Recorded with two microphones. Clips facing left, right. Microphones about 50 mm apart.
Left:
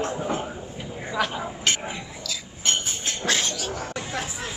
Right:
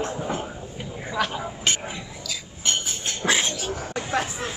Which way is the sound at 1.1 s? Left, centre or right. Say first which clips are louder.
Even; centre.